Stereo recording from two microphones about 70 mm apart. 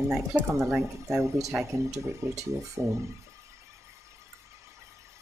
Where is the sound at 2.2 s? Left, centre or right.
Right.